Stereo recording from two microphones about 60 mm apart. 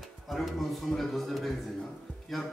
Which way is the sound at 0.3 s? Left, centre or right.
Centre.